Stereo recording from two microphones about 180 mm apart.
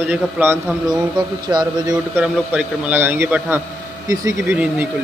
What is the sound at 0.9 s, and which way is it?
Speech, 25° right (ahead or behind).